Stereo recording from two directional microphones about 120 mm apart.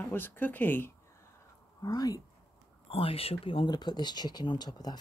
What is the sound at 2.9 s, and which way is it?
Speech, 55° left (ahead or behind).